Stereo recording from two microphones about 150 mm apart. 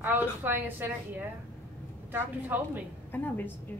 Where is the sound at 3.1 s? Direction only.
15° left (ahead or behind).